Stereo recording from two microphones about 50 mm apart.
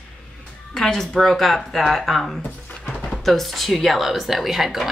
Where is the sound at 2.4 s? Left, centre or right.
Centre.